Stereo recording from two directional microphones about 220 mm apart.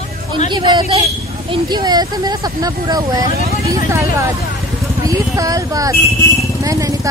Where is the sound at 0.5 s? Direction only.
20° right (ahead or behind).